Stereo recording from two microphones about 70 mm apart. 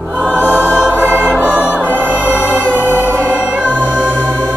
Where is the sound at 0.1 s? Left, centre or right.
Right.